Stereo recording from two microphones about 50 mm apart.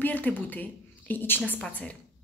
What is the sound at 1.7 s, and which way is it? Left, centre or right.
Speech, left.